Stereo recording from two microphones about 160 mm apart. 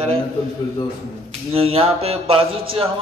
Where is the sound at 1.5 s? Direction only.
35° right (ahead or behind).